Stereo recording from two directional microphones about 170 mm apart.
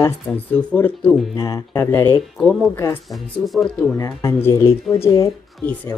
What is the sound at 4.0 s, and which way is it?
Speech, 15° left (ahead or behind).